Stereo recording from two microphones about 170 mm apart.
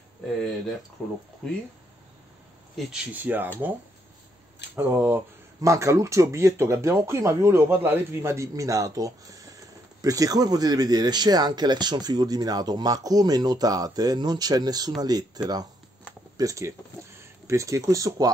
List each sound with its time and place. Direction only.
1.0 s speech: 5° left (ahead or behind)
2.9 s speech: 10° right (ahead or behind)
4.7 s speech: 10° right (ahead or behind)